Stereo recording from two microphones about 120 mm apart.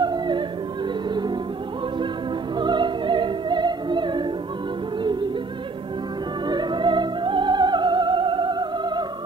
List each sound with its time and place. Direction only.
0.0 s music: 40° right (ahead or behind)
2.6 s music: 40° right (ahead or behind)
6.4 s music: 40° right (ahead or behind)